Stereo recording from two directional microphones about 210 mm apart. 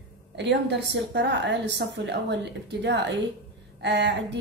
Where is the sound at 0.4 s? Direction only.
55° right (ahead or behind).